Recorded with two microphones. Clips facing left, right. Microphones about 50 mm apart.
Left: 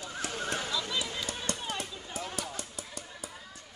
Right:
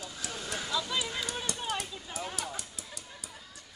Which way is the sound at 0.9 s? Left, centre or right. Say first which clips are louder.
Right 1 dB; centre.